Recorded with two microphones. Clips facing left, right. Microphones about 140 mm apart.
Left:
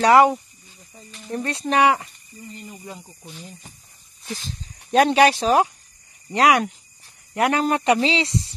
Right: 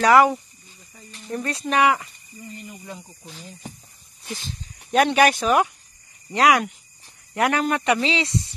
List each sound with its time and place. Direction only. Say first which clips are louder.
0.0 s speech: left 1 dB; 30° left (ahead or behind)
1.3 s speech: left 1 dB; 30° left (ahead or behind)
4.3 s speech: left 1 dB; 40° left (ahead or behind)